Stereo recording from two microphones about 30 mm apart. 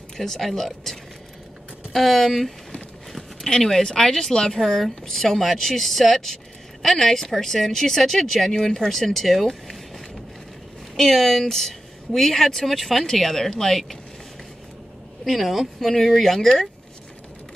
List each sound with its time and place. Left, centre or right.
0.2 s speech: centre
3.6 s a woman's voice: centre
15.2 s speech: centre
15.8 s speech: centre